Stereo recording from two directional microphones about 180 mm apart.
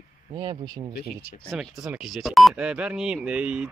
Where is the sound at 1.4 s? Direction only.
Centre (ahead or behind).